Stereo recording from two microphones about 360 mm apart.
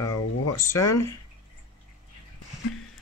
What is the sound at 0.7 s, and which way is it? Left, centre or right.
Speech, centre.